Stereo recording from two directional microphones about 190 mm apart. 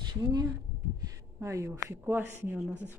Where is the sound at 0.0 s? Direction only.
20° right (ahead or behind).